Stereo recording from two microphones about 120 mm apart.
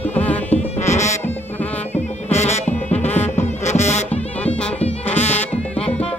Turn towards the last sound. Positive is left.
turn(degrees=65)  # may be behind; listen again after turning